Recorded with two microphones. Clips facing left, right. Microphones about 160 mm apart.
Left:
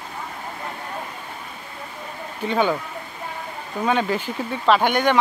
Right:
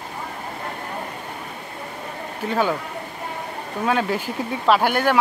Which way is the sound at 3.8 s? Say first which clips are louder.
Even; 5° right (ahead or behind).